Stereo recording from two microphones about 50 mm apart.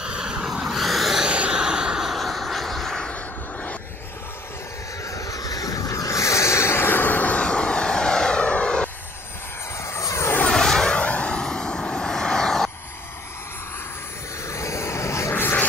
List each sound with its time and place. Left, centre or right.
0.0 s vehicle: centre
1.2 s vehicle: right
2.0 s vehicle: centre
5.9 s vehicle: left; by 8.8 s centre
9.8 s vehicle: left
10.5 s aircraft: centre
11.0 s vehicle: left; by 12.7 s centre
14.5 s vehicle: left